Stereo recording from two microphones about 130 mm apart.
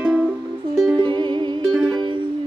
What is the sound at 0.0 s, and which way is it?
Music, 10° right (ahead or behind).